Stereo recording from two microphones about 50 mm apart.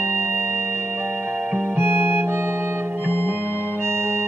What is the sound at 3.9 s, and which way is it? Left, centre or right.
Organ, right.